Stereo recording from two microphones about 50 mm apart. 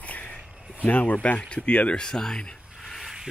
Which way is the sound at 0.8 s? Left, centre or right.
Left.